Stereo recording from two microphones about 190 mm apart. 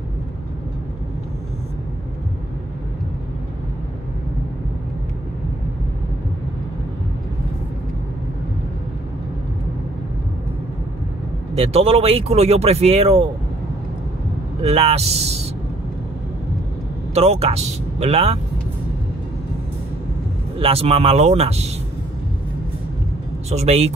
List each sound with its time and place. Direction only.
11.5 s speech: 30° right (ahead or behind)
14.6 s speech: 30° right (ahead or behind)
17.1 s speech: 35° right (ahead or behind)
20.5 s speech: 30° right (ahead or behind)
23.5 s speech: 35° right (ahead or behind)